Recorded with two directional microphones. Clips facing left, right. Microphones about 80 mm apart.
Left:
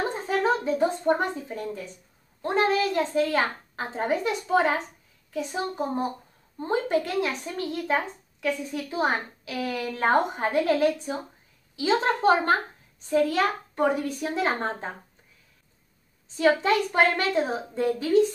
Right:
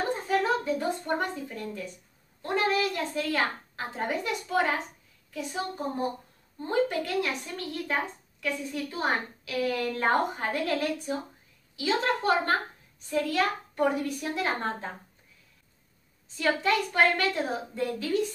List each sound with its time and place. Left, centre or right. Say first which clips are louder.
0.3 s speech: left 3 dB; left
16.3 s speech: left 5 dB; left